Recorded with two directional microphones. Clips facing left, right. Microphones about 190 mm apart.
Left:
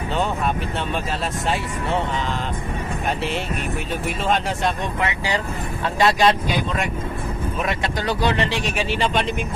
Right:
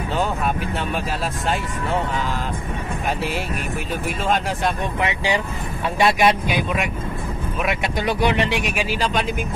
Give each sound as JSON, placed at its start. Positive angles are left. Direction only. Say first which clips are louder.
{"t": 5.0, "sound": "speech", "louder": "right 2 dB", "side_deg": -15}
{"t": 8.7, "sound": "speech", "louder": "left 1 dB", "side_deg": 0}